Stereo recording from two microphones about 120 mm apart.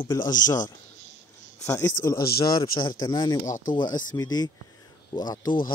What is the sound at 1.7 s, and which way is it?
Speech, 25° left (ahead or behind).